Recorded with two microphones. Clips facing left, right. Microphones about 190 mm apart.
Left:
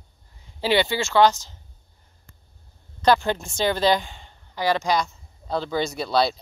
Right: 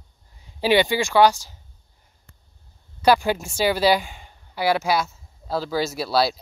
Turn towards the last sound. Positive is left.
turn(degrees=-5)  # may be behind; listen again after turning